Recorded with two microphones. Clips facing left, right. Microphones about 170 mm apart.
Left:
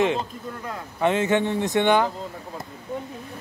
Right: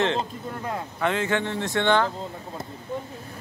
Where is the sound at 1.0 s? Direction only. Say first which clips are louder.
Left 4 dB; 20° left (ahead or behind).